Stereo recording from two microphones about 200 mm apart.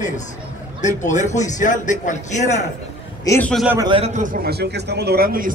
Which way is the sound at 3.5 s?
Centre (ahead or behind).